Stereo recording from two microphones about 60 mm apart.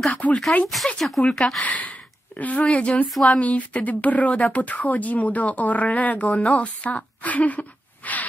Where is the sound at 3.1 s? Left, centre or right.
Centre.